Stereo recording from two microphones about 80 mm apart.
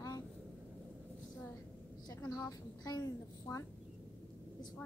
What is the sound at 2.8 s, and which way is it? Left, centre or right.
Speech, left.